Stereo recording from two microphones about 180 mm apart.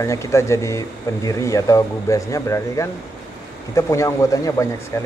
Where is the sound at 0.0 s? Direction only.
15° left (ahead or behind).